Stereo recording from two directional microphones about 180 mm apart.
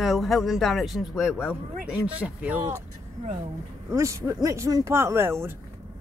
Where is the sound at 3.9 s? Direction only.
15° right (ahead or behind).